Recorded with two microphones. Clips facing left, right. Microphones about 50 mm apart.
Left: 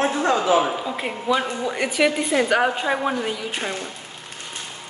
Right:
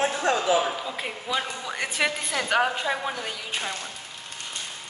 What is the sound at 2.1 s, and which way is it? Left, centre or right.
Speech, left.